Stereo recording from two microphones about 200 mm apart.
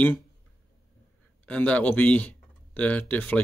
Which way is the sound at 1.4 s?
5° left (ahead or behind).